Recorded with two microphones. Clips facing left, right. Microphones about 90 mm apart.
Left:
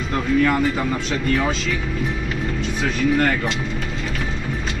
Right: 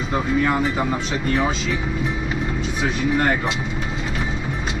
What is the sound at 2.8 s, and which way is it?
Speech, 15° right (ahead or behind).